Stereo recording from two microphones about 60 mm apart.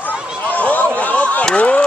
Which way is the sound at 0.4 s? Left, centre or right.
Left.